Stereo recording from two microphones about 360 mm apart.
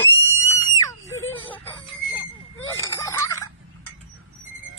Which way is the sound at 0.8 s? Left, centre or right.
Centre.